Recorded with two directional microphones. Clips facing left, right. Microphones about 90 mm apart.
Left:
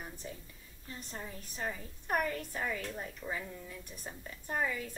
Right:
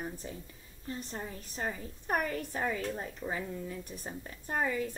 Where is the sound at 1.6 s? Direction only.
10° right (ahead or behind).